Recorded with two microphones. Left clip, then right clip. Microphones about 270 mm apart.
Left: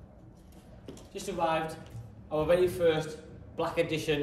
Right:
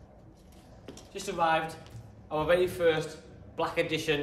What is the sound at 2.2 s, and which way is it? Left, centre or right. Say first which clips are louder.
Speech: even; centre.